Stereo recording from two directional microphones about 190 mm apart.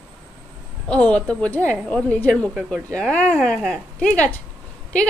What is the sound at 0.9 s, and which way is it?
A woman's voice, 5° left (ahead or behind).